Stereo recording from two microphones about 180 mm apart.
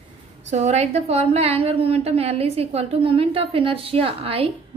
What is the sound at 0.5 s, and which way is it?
A woman's voice, 40° right (ahead or behind).